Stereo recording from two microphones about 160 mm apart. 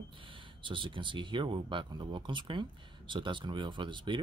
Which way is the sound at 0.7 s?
30° right (ahead or behind).